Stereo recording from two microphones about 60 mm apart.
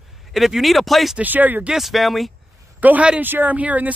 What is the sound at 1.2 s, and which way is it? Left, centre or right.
Speech, right.